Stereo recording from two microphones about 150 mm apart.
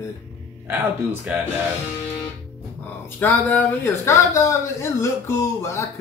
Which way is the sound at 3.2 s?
10° left (ahead or behind).